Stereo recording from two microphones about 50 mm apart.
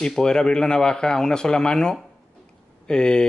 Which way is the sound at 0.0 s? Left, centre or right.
Centre.